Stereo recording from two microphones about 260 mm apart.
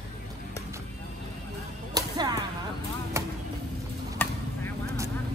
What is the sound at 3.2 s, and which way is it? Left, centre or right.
Vehicle, centre.